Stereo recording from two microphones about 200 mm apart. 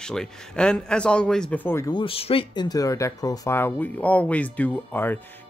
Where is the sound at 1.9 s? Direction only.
25° left (ahead or behind); by 5.1 s 10° left (ahead or behind).